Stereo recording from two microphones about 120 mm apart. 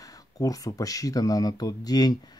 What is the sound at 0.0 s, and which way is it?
Speech, 30° left (ahead or behind).